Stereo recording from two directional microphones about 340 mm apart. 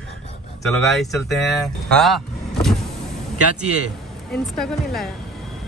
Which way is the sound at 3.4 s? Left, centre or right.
Right.